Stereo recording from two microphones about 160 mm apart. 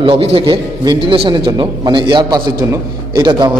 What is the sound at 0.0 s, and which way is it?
A man's voice, 35° right (ahead or behind).